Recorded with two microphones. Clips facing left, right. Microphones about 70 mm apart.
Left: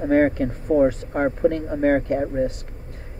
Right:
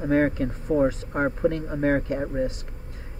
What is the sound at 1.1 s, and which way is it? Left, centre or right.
Speech, centre.